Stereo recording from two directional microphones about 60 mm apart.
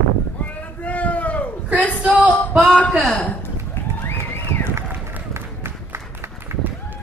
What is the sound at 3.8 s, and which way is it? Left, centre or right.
Run, left.